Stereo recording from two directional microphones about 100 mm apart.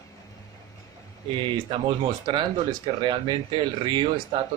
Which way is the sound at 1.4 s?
55° right (ahead or behind).